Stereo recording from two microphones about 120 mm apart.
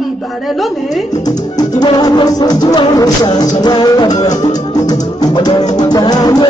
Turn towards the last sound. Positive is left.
turn(degrees=35)  # may be behind; listen again after turning